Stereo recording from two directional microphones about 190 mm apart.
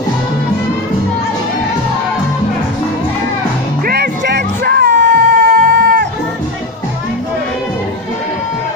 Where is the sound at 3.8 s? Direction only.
55° right (ahead or behind); by 5.1 s 70° right (ahead or behind).